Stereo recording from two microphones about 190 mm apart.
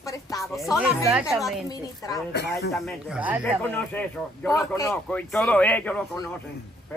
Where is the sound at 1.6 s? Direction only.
20° left (ahead or behind).